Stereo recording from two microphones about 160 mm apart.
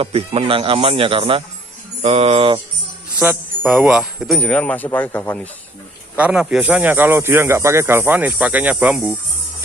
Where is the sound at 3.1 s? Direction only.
10° right (ahead or behind); by 5.4 s 15° left (ahead or behind).